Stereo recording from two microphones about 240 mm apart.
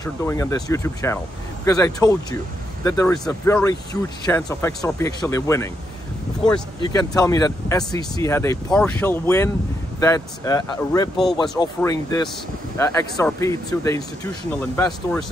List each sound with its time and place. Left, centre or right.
0.0 s speech: centre